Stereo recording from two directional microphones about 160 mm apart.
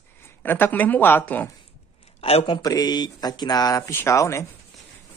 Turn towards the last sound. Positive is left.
turn(degrees=20)  # may be behind; listen again after turning